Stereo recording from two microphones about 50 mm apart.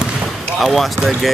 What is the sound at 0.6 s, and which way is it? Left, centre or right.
Speech, centre.